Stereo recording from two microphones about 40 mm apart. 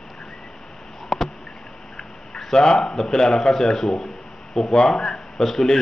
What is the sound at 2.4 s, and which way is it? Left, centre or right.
Speech, left.